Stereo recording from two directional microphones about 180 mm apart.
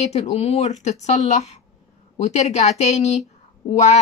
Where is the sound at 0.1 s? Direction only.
35° left (ahead or behind).